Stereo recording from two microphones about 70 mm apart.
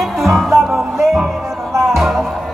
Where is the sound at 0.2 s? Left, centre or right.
Centre.